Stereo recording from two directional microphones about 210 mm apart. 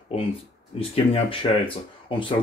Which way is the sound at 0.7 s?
25° left (ahead or behind).